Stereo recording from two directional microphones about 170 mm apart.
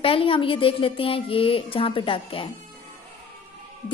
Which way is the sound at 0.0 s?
35° left (ahead or behind).